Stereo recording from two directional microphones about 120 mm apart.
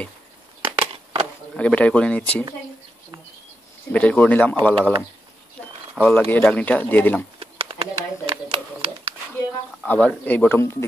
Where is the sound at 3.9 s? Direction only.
10° left (ahead or behind).